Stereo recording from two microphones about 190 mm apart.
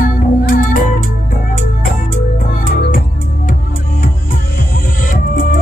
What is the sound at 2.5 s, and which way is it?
Music, 45° left (ahead or behind).